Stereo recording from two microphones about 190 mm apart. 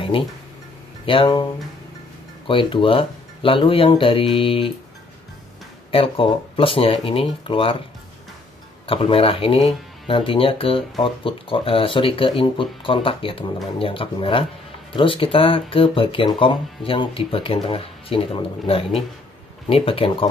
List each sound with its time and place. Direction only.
0.1 s speech: 30° left (ahead or behind)
2.4 s speech: 25° left (ahead or behind)
5.9 s speech: 30° left (ahead or behind)
8.8 s speech: 30° left (ahead or behind)